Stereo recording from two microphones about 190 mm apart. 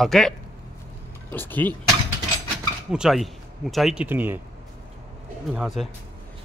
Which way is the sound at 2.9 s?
Centre (ahead or behind).